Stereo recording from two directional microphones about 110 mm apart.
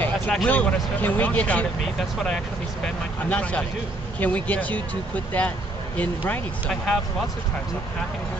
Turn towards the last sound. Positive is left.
turn(degrees=15)  # may be behind; listen again after turning